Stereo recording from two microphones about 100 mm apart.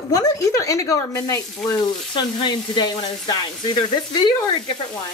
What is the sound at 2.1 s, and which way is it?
Speech, 50° left (ahead or behind).